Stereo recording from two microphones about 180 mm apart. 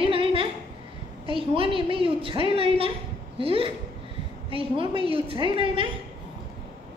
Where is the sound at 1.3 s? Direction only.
30° right (ahead or behind).